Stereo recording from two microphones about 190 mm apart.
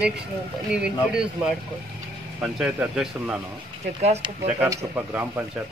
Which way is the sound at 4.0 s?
35° right (ahead or behind).